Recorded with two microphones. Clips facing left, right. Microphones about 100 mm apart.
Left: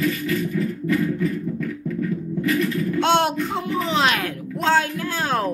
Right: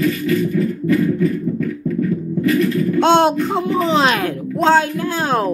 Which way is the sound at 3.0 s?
30° right (ahead or behind).